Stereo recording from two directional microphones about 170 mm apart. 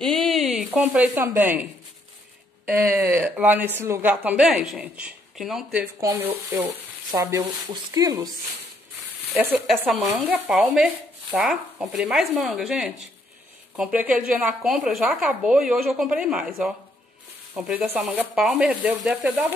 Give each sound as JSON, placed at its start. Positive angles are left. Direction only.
{"t": 0.0, "sound": "speech", "side_deg": 0}
{"t": 5.9, "sound": "speech", "side_deg": -15}
{"t": 9.5, "sound": "speech", "side_deg": 0}